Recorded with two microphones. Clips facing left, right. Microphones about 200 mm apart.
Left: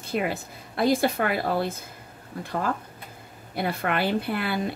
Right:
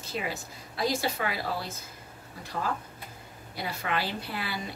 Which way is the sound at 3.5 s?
55° left (ahead or behind).